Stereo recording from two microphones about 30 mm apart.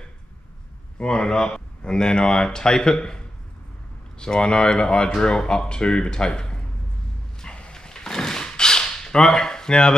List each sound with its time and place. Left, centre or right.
0.9 s speech: left
4.2 s speech: left
7.4 s a sound: left
7.7 s drawer open or close: left